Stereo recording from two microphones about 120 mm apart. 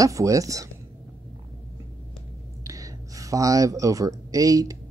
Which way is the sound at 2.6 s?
30° right (ahead or behind).